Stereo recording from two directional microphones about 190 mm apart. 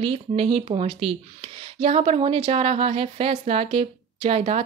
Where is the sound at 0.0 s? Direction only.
30° right (ahead or behind).